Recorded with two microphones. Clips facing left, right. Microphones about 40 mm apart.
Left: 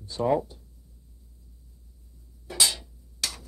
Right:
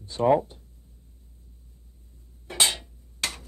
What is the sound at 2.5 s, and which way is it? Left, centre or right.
Hammer, right.